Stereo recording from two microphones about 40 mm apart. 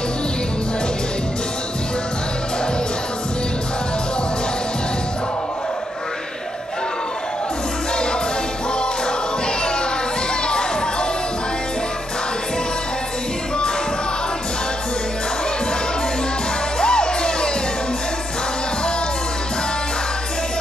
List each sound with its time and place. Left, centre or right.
16.8 s music: left